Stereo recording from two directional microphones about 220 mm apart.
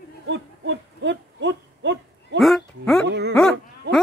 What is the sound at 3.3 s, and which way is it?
Speech, centre (ahead or behind).